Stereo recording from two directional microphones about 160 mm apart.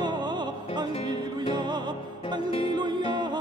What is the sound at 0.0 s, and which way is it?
Music, 25° right (ahead or behind).